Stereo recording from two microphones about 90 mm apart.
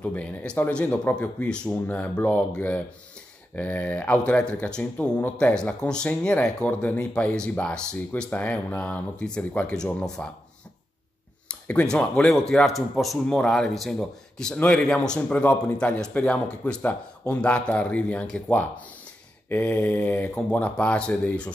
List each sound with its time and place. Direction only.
0.0 s speech: 15° left (ahead or behind)
11.4 s a sound: 15° left (ahead or behind)
11.9 s a man's voice: 10° left (ahead or behind)